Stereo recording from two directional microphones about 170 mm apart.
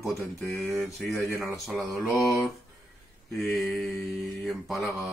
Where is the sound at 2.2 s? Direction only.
20° left (ahead or behind).